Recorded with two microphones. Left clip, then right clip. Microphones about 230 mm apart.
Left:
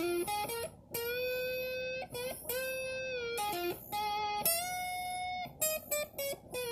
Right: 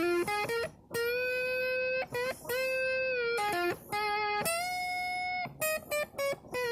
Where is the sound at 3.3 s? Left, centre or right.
Right.